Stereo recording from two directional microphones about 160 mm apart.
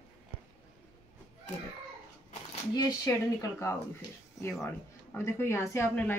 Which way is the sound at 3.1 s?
15° left (ahead or behind).